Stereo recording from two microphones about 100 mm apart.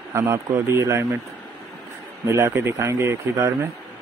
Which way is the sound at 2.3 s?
30° right (ahead or behind).